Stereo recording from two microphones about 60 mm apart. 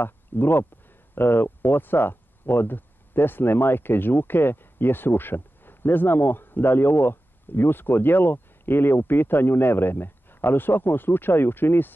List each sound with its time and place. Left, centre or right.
0.0 s speech: left